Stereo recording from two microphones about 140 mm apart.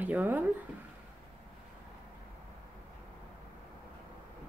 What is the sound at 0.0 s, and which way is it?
Speech, 10° right (ahead or behind).